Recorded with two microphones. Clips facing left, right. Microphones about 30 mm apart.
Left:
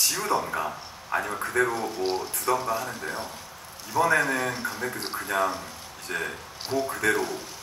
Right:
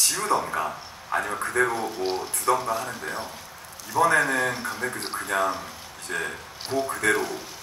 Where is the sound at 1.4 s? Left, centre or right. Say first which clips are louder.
Right 1 dB; right.